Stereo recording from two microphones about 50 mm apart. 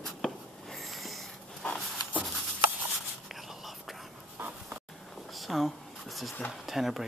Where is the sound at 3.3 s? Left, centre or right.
Centre.